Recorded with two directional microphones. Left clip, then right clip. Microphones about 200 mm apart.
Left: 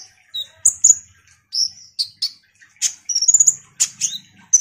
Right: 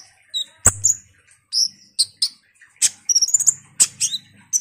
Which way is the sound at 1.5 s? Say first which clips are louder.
Right 1 dB; 20° right (ahead or behind).